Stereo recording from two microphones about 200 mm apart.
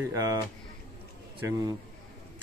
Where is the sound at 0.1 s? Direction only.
15° right (ahead or behind).